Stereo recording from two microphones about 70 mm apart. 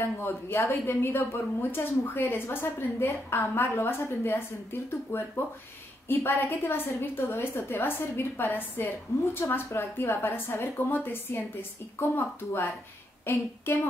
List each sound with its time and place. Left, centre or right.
0.0 s a woman's voice: left